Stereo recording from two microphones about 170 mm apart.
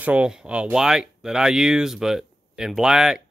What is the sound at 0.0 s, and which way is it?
Speech, 10° right (ahead or behind).